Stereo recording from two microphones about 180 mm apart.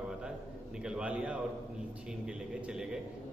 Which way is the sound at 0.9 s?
5° right (ahead or behind).